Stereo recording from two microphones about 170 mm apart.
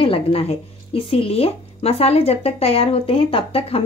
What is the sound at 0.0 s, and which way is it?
A woman's voice, 35° left (ahead or behind).